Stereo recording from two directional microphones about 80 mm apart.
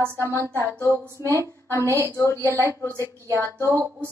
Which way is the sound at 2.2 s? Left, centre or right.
Left.